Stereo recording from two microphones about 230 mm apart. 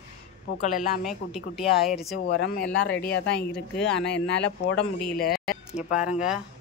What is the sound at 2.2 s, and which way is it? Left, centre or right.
Speech, left.